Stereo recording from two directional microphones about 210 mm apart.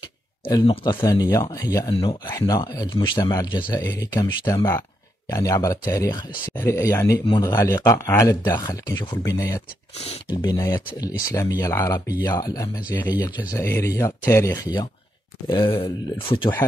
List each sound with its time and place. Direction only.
0.5 s speech: 20° left (ahead or behind)